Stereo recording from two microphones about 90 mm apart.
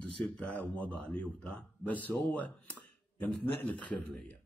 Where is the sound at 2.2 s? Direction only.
15° left (ahead or behind).